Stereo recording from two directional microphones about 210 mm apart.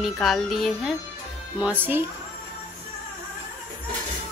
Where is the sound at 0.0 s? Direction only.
Centre (ahead or behind).